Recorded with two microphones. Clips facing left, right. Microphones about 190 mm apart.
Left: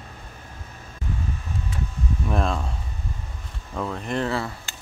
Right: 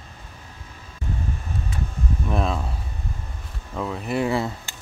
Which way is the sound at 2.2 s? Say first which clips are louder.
Even; centre (ahead or behind).